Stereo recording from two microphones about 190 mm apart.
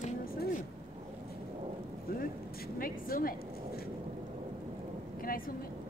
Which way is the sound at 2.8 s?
50° left (ahead or behind).